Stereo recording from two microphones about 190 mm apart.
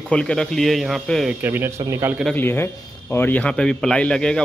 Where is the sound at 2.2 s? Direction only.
10° left (ahead or behind).